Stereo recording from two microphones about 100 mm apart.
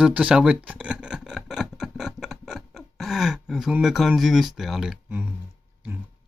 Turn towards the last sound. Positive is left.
turn(degrees=-20)  # may be behind; listen again after turning